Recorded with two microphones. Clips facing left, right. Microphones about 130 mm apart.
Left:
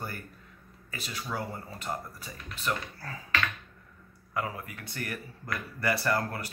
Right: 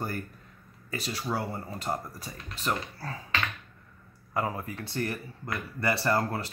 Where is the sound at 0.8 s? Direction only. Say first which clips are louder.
Right 5 dB; 40° right (ahead or behind).